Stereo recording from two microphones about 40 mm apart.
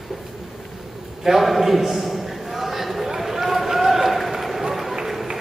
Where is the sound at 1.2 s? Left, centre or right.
Centre.